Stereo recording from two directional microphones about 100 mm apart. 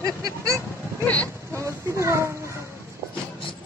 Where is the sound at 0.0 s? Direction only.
35° right (ahead or behind).